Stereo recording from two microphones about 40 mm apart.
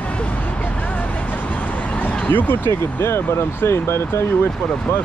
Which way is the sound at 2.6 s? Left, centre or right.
Left.